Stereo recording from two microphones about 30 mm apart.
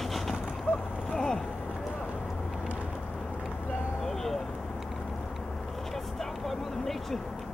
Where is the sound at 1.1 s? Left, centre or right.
Left.